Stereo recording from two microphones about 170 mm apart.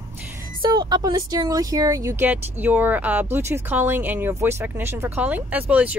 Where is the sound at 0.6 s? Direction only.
25° right (ahead or behind).